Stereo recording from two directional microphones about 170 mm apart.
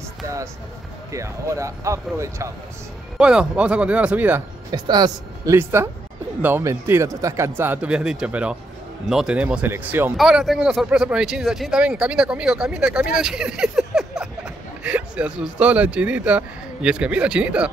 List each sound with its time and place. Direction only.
1.1 s a man's voice: 15° right (ahead or behind)
3.2 s a man's voice: 5° right (ahead or behind)
4.6 s a man's voice: 25° right (ahead or behind); by 17.6 s 5° right (ahead or behind)